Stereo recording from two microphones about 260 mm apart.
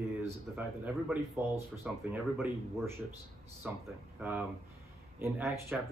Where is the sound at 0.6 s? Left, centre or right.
Centre.